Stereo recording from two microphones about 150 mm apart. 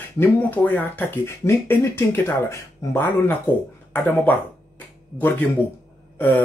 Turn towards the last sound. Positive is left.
turn(degrees=10)  # may be behind; listen again after turning